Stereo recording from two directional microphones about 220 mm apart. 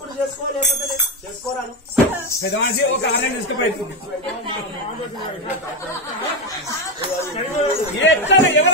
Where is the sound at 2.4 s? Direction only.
50° left (ahead or behind).